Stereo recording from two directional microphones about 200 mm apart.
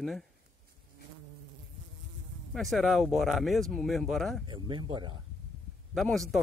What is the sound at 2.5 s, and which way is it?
Speech, centre (ahead or behind).